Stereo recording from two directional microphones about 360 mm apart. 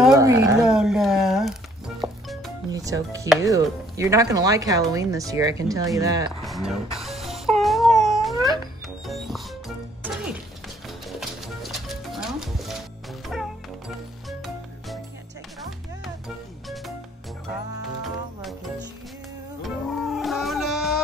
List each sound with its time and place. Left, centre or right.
0.0 s a sound: centre
2.0 s music: centre
2.7 s speech: centre
10.0 s music: centre
16.6 s music: centre
19.6 s music: centre